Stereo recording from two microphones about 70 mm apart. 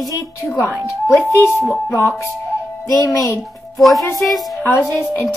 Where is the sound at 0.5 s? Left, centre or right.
Left.